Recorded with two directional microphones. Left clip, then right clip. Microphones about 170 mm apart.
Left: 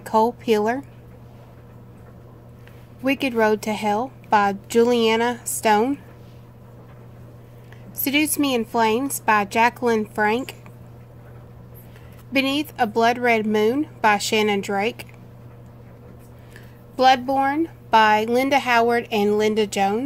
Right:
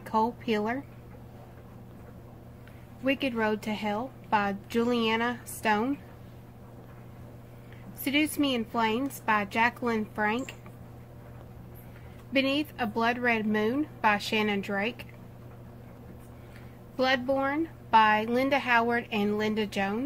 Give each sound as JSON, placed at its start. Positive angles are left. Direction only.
{"t": 0.0, "sound": "a woman's voice", "side_deg": 65}
{"t": 3.0, "sound": "a woman's voice", "side_deg": 65}
{"t": 8.0, "sound": "a woman's voice", "side_deg": 65}
{"t": 12.3, "sound": "a woman's voice", "side_deg": 65}
{"t": 16.9, "sound": "a woman's voice", "side_deg": 65}